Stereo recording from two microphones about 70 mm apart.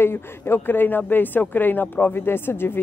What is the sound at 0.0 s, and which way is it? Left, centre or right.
Speech, left.